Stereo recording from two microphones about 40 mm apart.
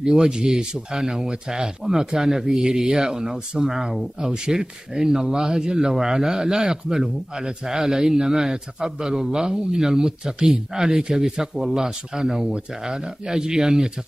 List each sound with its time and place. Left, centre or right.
0.0 s speech: centre